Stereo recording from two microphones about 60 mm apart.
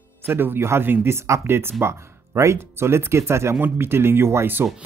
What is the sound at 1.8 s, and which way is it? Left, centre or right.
Speech, right.